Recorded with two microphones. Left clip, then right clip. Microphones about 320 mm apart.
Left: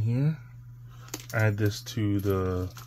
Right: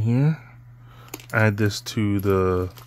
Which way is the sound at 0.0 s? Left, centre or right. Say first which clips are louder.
Right 8 dB; right.